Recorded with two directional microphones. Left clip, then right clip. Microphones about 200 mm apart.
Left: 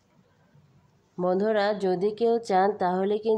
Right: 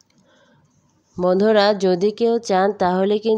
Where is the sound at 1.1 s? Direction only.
35° right (ahead or behind).